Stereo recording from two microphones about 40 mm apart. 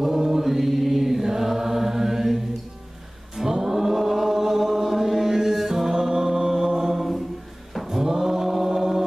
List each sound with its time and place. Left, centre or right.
0.0 s chant: centre
7.7 s mantra: centre